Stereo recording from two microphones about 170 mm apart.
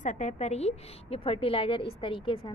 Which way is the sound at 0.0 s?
45° left (ahead or behind).